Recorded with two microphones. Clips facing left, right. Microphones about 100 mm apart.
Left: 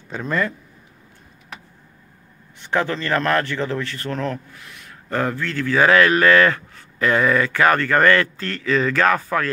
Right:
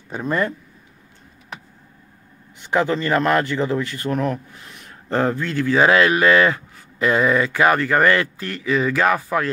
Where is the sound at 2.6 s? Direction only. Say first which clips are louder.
Right 2 dB; 15° right (ahead or behind).